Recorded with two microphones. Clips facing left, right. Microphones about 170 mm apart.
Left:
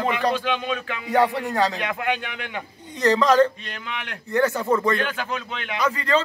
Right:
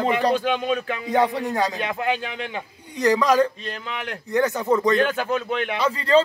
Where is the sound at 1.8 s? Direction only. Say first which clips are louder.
Right 1 dB; 30° right (ahead or behind).